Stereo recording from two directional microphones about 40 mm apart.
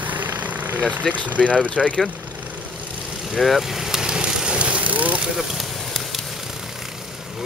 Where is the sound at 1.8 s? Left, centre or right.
Centre.